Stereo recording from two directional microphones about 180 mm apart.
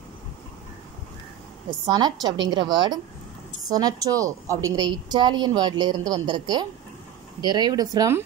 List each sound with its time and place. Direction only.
1.9 s a woman's voice: 25° right (ahead or behind)